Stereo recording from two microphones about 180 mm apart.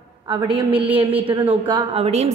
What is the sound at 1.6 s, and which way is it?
Speech, 30° right (ahead or behind).